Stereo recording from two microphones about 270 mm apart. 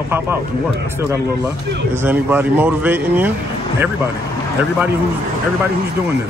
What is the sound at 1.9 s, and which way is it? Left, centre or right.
Speech, centre.